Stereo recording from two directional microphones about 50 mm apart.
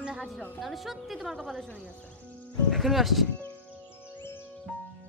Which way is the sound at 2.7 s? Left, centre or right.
Centre.